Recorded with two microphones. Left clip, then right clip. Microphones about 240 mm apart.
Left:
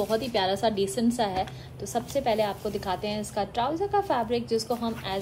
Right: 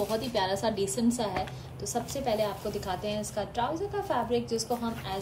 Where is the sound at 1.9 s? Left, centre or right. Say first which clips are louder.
Left 4 dB; left.